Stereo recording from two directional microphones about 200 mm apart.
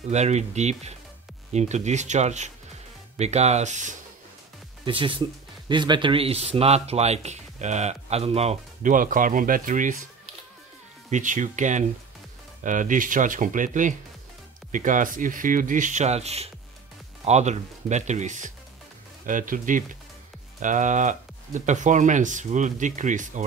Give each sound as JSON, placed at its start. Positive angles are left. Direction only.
{"t": 0.1, "sound": "speech", "side_deg": -35}
{"t": 4.8, "sound": "speech", "side_deg": -25}
{"t": 11.1, "sound": "speech", "side_deg": -40}